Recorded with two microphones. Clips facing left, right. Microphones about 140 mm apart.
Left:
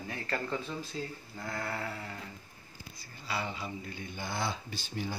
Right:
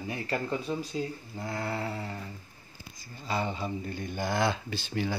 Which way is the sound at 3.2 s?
45° right (ahead or behind).